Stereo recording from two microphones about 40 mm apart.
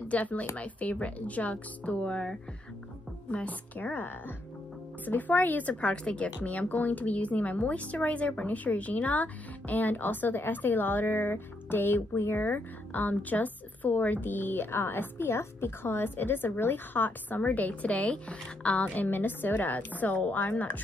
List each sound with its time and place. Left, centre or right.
0.1 s a woman's voice: left
3.4 s a woman's voice: left
12.4 s a woman's voice: left
19.0 s a woman's voice: left